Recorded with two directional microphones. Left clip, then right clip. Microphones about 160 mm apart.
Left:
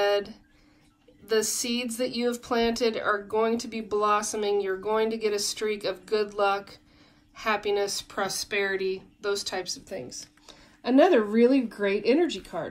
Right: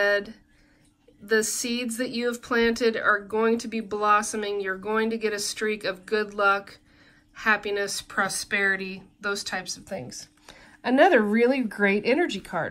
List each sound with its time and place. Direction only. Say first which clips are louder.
0.0 s a sound: right 2 dB; 20° left (ahead or behind)
1.2 s speech: right 2 dB; 20° left (ahead or behind)
10.0 s speech: even; 30° right (ahead or behind)